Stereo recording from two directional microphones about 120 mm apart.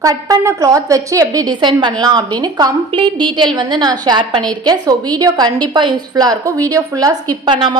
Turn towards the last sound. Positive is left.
turn(degrees=-40)  # may be behind; listen again after turning